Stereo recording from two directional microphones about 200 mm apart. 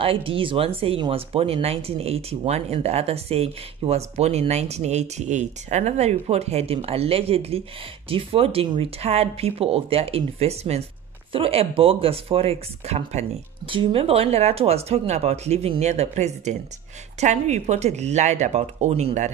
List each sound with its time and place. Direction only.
0.0 s speech: 25° right (ahead or behind)